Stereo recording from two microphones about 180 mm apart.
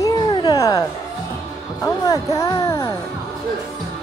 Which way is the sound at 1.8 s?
20° left (ahead or behind).